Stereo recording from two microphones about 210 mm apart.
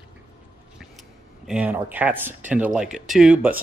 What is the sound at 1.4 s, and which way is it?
Speech, 5° right (ahead or behind).